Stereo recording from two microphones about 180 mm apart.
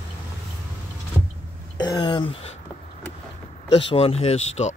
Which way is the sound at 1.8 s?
25° left (ahead or behind).